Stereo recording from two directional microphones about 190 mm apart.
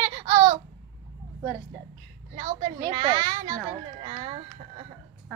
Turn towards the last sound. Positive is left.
turn(degrees=-30)  # may be behind; listen again after turning